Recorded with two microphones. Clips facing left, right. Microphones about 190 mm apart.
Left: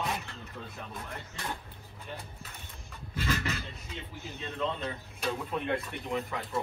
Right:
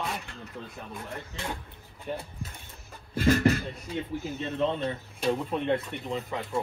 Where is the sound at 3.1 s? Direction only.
55° right (ahead or behind).